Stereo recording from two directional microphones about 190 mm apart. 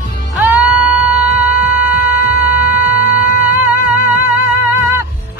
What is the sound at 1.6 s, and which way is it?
Shofar, 10° right (ahead or behind).